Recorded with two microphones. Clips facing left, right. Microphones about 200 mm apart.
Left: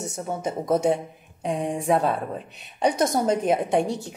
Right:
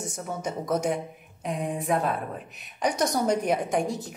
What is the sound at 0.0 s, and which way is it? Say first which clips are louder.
Speech: left 4 dB; 55° left (ahead or behind).